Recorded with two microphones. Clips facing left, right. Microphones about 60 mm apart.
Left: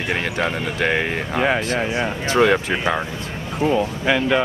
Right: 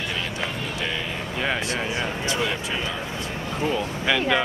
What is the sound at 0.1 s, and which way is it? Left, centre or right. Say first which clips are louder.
Speech: left 7 dB; left.